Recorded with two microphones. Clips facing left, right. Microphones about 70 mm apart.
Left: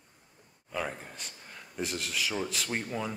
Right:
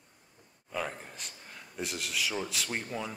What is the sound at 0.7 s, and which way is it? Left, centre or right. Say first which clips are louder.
A man's voice: left 1 dB; centre.